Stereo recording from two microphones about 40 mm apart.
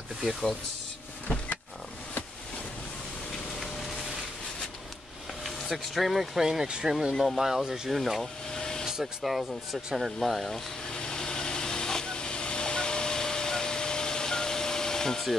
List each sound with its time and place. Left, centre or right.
0.3 s speech: centre
3.5 s a sound: centre
5.4 s speech: centre
7.9 s speech: centre
8.5 s vehicle: centre
8.8 s speech: centre
10.1 s speech: centre
10.9 s vehicle: centre